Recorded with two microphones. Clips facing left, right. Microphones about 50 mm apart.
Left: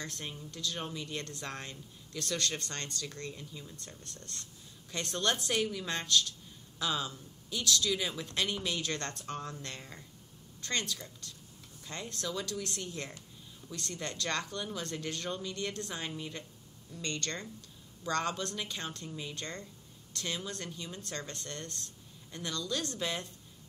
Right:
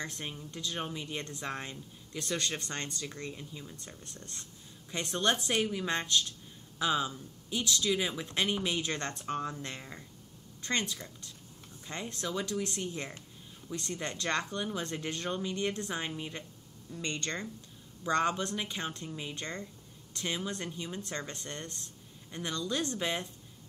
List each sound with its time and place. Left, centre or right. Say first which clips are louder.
0.0 s speech: right 2 dB; right